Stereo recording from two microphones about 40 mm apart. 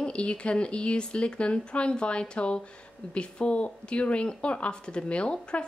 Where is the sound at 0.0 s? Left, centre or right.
Left.